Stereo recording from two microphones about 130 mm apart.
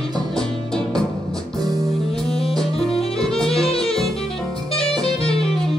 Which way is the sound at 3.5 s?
45° left (ahead or behind).